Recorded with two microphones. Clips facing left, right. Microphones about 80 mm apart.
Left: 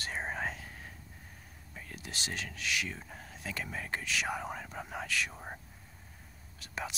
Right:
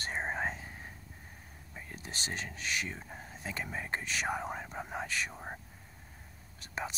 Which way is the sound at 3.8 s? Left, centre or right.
Right.